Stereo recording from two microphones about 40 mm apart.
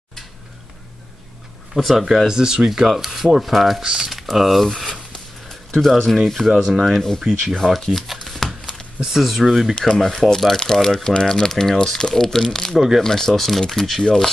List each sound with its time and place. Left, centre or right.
1.8 s rub: centre
2.2 s speech: centre
2.9 s rub: centre
3.8 s speech: right
4.1 s speech: centre
5.5 s speech: centre
6.1 s rub: centre
6.5 s speech: centre
6.8 s speech: centre
9.0 s speech: centre
9.8 s speech: centre
12.7 s speech: centre
13.0 s speech: centre